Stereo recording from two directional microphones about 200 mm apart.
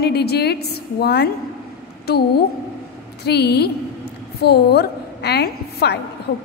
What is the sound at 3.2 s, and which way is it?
A woman's voice, 55° left (ahead or behind).